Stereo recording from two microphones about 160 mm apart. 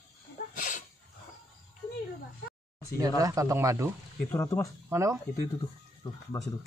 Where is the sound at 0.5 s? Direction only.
55° left (ahead or behind).